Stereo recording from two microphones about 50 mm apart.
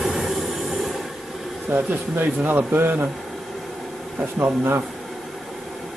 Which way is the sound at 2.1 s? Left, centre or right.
Right.